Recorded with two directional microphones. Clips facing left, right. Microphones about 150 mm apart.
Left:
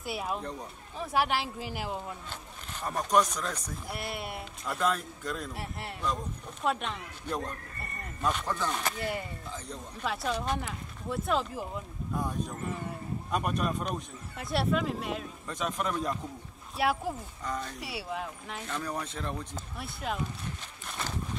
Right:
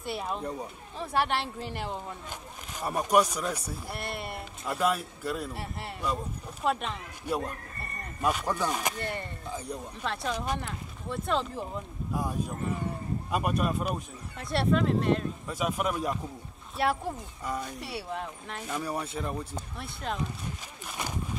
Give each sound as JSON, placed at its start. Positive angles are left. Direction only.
{"t": 0.0, "sound": "speech", "side_deg": 5}
{"t": 0.4, "sound": "speech", "side_deg": -10}
{"t": 0.9, "sound": "speech", "side_deg": 0}
{"t": 2.2, "sound": "speech", "side_deg": -10}
{"t": 3.9, "sound": "speech", "side_deg": 0}
{"t": 8.9, "sound": "speech", "side_deg": 5}
{"t": 10.3, "sound": "speech", "side_deg": -10}
{"t": 10.6, "sound": "speech", "side_deg": 0}
{"t": 12.2, "sound": "speech", "side_deg": -10}
{"t": 17.5, "sound": "speech", "side_deg": -10}
{"t": 17.7, "sound": "speech", "side_deg": 0}
{"t": 18.7, "sound": "speech", "side_deg": -10}
{"t": 19.5, "sound": "speech", "side_deg": 5}
{"t": 20.8, "sound": "a sound", "side_deg": -10}